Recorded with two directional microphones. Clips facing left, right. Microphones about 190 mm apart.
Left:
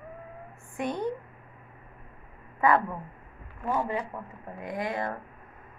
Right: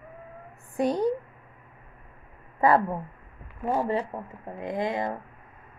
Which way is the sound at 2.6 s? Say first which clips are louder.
Right 3 dB; 35° right (ahead or behind).